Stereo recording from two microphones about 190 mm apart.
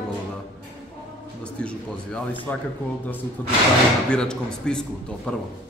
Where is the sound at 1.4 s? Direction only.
5° left (ahead or behind).